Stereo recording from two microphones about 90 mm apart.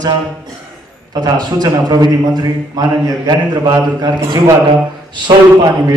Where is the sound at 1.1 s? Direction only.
50° right (ahead or behind).